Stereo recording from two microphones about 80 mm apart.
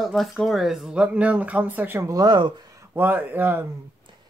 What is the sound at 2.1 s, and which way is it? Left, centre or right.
Speech, right.